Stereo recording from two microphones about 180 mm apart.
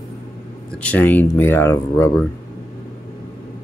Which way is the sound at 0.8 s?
10° left (ahead or behind).